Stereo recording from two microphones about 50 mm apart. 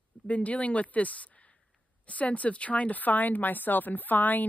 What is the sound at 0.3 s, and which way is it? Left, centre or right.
Speech, left.